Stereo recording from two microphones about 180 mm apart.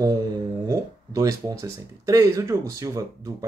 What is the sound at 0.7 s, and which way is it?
Speech, 15° right (ahead or behind).